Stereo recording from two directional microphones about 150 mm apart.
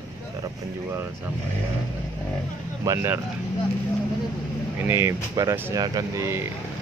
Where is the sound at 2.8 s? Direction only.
20° right (ahead or behind).